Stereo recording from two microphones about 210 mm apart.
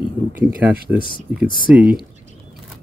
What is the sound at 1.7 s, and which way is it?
Speech, 5° right (ahead or behind).